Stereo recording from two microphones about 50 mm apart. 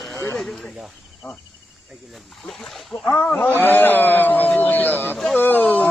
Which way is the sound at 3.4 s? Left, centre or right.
Left.